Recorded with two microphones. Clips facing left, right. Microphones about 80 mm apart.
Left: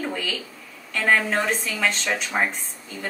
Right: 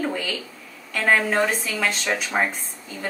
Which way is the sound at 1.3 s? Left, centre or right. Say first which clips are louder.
Right 2 dB; centre.